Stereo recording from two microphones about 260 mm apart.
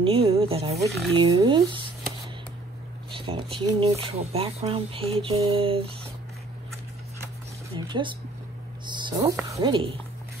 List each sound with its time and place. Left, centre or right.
0.0 s speech: right
3.2 s speech: centre
7.7 s speech: centre